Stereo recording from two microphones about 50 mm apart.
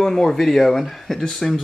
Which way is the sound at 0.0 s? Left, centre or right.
Centre.